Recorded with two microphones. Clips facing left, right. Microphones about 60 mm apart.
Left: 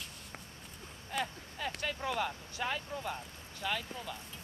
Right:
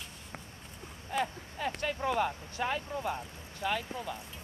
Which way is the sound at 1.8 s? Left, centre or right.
Right.